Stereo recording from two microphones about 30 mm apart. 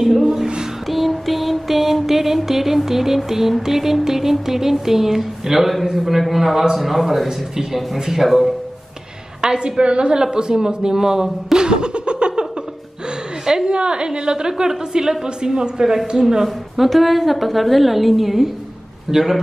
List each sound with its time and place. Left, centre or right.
0.2 s music: centre
0.8 s music: centre
6.7 s a woman's voice: centre
7.2 s music: centre
9.4 s a woman's voice: right
10.1 s speech: right
11.5 s laughter: right
13.7 s speech: right
16.7 s a woman's voice: centre
19.0 s music: centre